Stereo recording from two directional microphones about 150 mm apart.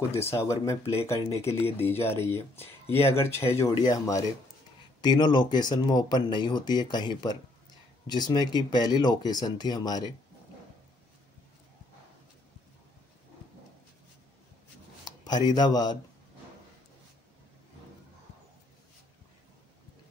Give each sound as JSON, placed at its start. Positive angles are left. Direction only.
{"t": 0.1, "sound": "speech", "side_deg": 15}
{"t": 15.0, "sound": "speech", "side_deg": 25}